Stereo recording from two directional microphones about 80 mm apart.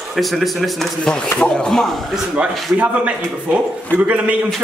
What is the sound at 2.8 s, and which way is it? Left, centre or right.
A man's voice, centre.